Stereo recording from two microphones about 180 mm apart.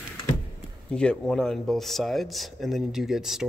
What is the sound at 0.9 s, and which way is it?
Speech, 5° left (ahead or behind).